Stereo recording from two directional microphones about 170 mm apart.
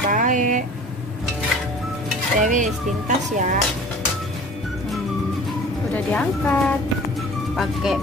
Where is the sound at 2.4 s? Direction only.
50° right (ahead or behind).